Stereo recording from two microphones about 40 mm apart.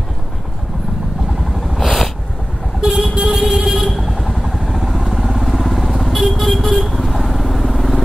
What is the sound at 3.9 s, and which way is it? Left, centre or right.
Vehicle, centre.